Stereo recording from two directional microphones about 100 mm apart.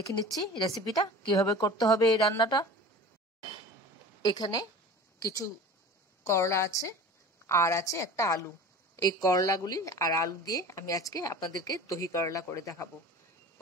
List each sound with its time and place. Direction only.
0.1 s speech: 50° left (ahead or behind)
0.7 s speech: 40° left (ahead or behind)
4.2 s a woman's voice: 40° left (ahead or behind)